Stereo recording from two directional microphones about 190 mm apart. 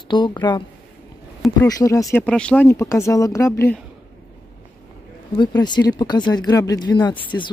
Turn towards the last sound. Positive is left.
turn(degrees=15)  # may be behind; listen again after turning